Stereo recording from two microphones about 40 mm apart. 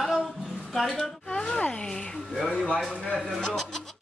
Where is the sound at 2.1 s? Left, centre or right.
Centre.